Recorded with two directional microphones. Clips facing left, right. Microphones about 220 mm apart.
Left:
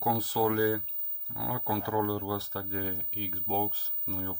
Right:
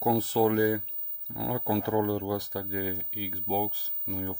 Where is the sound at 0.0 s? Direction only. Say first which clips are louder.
Right 4 dB; 25° right (ahead or behind).